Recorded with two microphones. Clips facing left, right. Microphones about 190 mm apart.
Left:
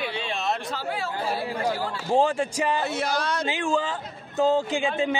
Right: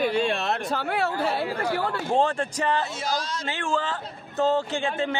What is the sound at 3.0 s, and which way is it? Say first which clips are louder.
Speech: left 2 dB; 65° left (ahead or behind).